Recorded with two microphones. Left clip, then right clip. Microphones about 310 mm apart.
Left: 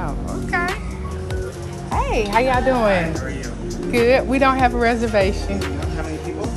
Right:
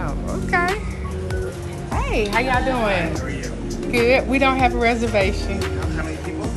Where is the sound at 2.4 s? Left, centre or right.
Centre.